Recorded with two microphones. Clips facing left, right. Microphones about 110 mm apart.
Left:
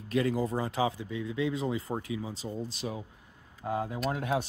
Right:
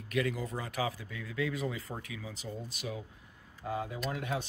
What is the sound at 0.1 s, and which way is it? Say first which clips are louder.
Speech: left 5 dB; 30° left (ahead or behind).